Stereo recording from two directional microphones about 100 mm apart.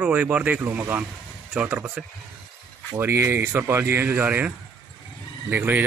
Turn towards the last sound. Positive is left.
turn(degrees=-20)  # may be behind; listen again after turning